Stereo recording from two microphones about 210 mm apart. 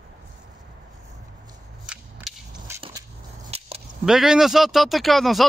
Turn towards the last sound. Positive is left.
turn(degrees=0)  # may be behind; listen again after turning